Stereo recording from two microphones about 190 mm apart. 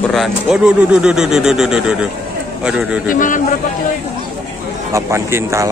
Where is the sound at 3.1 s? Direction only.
45° left (ahead or behind).